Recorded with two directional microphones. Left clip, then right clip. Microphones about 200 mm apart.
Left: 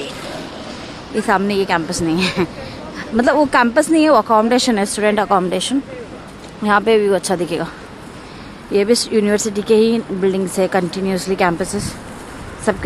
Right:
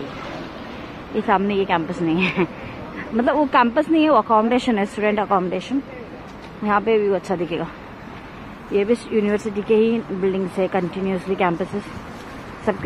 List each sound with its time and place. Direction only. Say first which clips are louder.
1.2 s speech: left 3 dB; 10° left (ahead or behind)
8.7 s speech: left 5 dB; 20° left (ahead or behind)